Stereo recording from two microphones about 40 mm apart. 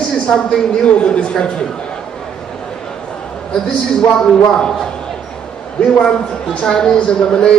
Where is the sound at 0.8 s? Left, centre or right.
Left.